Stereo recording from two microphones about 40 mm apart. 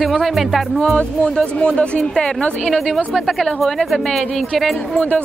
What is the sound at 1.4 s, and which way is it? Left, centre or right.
Speech, left.